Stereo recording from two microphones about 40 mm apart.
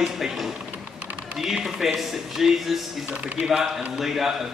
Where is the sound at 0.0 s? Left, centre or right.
Centre.